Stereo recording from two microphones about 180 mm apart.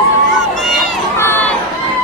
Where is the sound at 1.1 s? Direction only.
10° left (ahead or behind).